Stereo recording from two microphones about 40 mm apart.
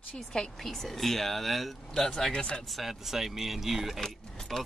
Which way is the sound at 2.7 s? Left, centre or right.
Centre.